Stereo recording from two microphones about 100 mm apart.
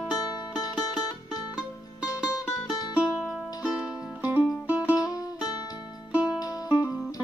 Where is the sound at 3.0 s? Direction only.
10° right (ahead or behind).